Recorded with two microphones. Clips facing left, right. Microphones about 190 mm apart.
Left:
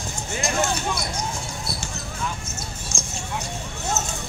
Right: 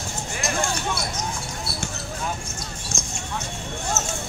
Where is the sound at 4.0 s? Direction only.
15° left (ahead or behind).